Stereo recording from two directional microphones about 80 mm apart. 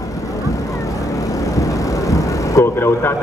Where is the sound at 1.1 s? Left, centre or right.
Left.